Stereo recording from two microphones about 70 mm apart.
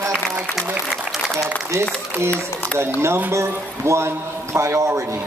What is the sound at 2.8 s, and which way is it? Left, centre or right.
Speech, right.